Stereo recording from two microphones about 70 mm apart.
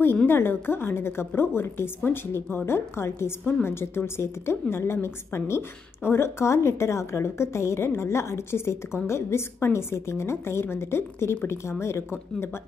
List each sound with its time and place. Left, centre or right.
0.3 s a woman's voice: left